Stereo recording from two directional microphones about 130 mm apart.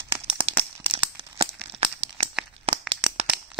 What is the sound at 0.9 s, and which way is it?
Tearing, 45° right (ahead or behind).